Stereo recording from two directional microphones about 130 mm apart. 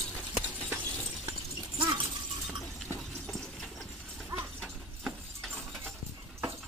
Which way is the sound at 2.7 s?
Centre (ahead or behind).